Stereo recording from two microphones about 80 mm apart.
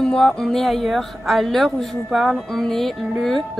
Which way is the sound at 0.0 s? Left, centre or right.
Centre.